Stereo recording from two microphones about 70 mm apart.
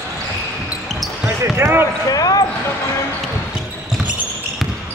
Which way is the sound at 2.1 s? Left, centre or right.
Left.